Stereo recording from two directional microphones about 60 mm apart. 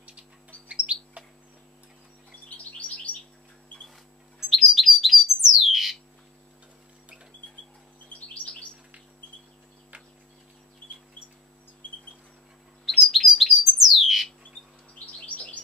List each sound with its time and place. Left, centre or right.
0.7 s bird: centre
4.5 s bird: centre
12.8 s bird: centre
15.2 s chirp: left